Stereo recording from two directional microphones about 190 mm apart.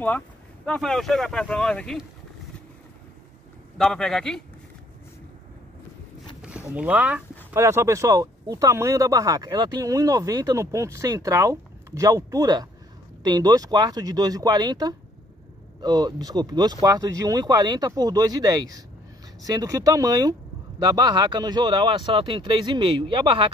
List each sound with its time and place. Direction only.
0.7 s speech: centre (ahead or behind)
3.7 s speech: 5° left (ahead or behind)
6.4 s speech: 5° right (ahead or behind); by 23.5 s 25° right (ahead or behind)